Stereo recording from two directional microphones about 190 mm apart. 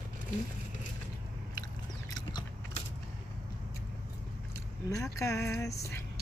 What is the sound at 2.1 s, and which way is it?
Biting, 20° left (ahead or behind).